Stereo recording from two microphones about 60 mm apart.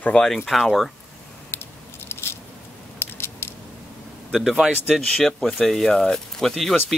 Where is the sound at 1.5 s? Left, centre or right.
Left.